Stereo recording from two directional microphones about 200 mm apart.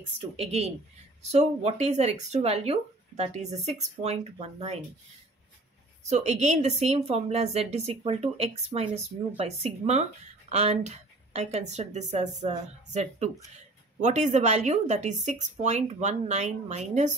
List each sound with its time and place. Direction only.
0.4 s speech: 30° right (ahead or behind)
6.0 s speech: 35° right (ahead or behind)